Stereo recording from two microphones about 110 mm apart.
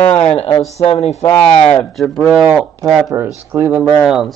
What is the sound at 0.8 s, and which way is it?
Speech, 75° left (ahead or behind).